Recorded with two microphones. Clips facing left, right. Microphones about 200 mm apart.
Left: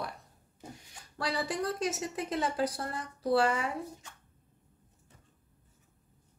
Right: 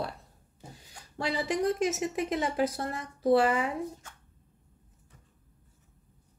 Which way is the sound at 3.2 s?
25° right (ahead or behind).